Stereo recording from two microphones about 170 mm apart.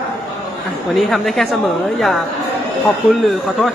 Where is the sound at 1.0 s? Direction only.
Centre (ahead or behind).